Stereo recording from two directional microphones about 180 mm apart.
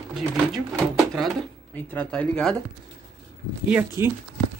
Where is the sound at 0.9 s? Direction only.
Centre (ahead or behind).